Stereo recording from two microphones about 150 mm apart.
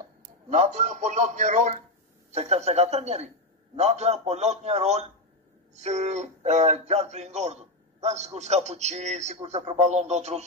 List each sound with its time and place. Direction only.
0.5 s speech: 50° right (ahead or behind)